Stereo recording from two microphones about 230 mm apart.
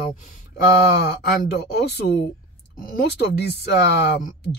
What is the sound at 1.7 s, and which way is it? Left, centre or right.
Speech, left.